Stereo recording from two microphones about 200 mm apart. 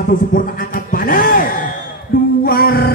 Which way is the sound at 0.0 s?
40° left (ahead or behind).